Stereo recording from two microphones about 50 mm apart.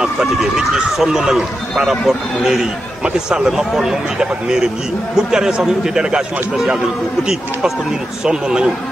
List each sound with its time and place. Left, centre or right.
0.9 s a man's voice: centre
3.0 s speech: centre
3.5 s a man's voice: centre
8.3 s a man's voice: centre